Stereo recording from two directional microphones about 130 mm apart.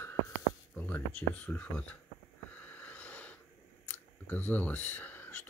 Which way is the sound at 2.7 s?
10° left (ahead or behind).